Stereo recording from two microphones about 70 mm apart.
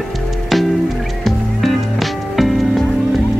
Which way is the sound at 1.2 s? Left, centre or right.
Centre.